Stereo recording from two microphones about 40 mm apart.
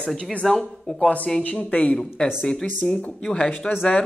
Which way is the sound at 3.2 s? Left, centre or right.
Centre.